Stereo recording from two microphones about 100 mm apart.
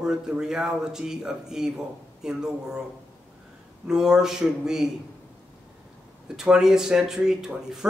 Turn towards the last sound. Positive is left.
turn(degrees=-5)  # may be behind; listen again after turning